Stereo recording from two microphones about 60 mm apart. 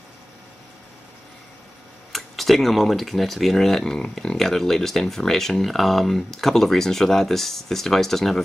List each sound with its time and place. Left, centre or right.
2.1 s speech: centre